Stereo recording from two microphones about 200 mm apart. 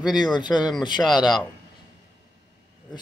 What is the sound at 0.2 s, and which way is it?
Speech, 20° left (ahead or behind).